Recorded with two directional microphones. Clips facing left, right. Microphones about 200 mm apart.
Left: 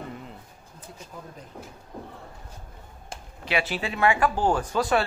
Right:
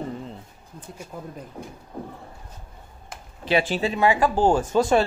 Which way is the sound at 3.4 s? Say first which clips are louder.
Right 6 dB; 30° right (ahead or behind).